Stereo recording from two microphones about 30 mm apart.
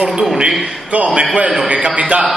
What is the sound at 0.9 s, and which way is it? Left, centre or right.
A man's voice, right.